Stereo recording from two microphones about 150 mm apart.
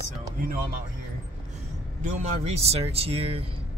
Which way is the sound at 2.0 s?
45° right (ahead or behind).